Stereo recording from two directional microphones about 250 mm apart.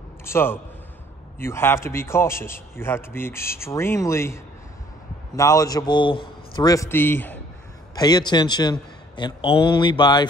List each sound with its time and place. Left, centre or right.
0.2 s a man's voice: centre